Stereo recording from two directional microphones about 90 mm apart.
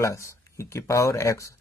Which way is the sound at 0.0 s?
35° left (ahead or behind).